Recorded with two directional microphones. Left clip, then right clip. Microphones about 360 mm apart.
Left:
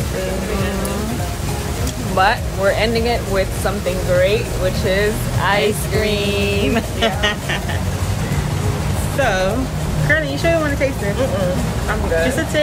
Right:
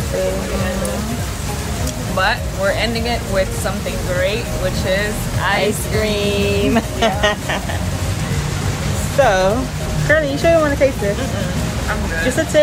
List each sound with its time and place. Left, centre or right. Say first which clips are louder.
2.1 s speech: left 2 dB; centre
4.8 s speech: left 2 dB; centre
5.6 s speech: even; centre
9.2 s speech: right 4 dB; centre